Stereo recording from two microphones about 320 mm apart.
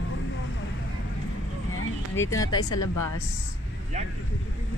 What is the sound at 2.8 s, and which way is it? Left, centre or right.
Speech, left.